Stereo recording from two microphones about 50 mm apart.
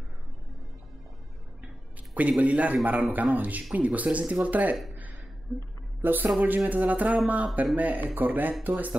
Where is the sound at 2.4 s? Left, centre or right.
Right.